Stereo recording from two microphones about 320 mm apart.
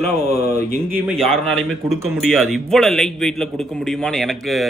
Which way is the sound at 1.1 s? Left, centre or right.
Centre.